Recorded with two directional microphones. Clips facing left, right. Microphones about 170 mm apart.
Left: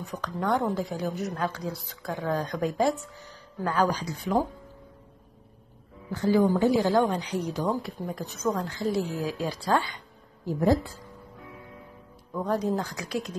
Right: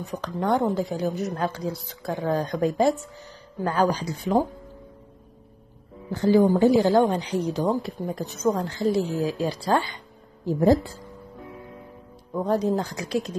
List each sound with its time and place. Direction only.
0.1 s a woman's voice: 30° right (ahead or behind)
6.0 s a woman's voice: 30° right (ahead or behind)
12.3 s a woman's voice: 30° right (ahead or behind)